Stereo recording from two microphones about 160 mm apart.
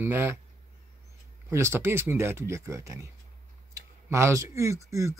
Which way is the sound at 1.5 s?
15° right (ahead or behind).